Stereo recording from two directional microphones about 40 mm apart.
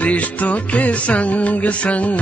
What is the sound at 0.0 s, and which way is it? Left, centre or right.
Music, left.